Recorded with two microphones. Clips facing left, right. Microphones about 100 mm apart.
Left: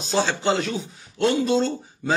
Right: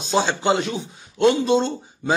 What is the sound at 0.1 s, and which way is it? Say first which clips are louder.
A man's voice: right 2 dB; 20° right (ahead or behind).